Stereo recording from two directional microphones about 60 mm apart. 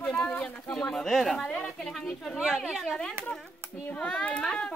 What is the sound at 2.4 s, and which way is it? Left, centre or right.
Speech, centre.